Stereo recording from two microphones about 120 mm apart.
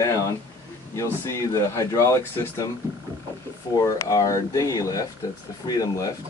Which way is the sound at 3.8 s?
30° left (ahead or behind).